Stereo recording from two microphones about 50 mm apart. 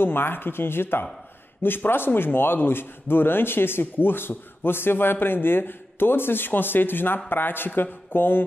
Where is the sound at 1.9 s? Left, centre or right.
Left.